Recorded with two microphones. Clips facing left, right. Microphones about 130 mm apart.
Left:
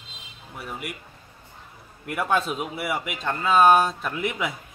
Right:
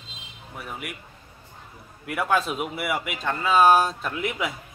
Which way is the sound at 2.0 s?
Centre (ahead or behind).